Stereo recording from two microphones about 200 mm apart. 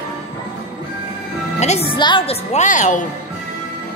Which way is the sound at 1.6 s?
30° left (ahead or behind).